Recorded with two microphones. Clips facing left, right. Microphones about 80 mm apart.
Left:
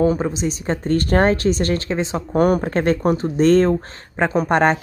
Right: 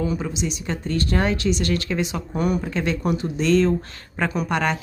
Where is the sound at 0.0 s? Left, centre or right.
Left.